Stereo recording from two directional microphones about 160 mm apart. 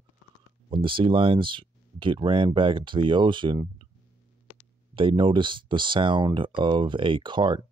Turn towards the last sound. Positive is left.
turn(degrees=-30)  # may be behind; listen again after turning